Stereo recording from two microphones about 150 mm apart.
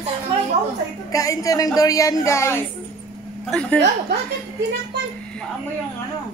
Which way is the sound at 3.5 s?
10° left (ahead or behind).